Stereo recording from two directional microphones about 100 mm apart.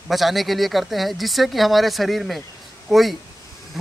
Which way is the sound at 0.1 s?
Centre (ahead or behind).